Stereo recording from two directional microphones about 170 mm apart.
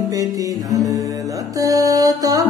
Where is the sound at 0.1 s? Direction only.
20° right (ahead or behind).